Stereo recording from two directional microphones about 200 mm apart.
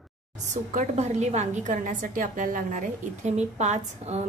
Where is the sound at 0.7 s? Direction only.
35° right (ahead or behind).